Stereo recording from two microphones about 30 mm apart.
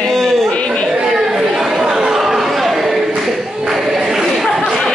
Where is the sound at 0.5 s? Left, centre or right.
Left.